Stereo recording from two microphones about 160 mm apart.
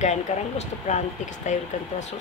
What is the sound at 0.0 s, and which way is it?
Speech, 45° left (ahead or behind).